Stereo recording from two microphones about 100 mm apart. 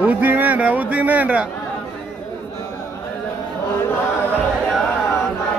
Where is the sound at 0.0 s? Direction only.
15° right (ahead or behind).